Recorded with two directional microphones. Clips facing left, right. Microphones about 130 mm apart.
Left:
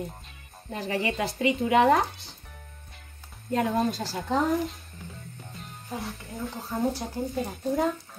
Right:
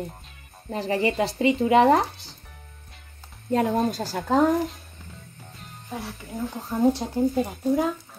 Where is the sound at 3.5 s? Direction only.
40° right (ahead or behind).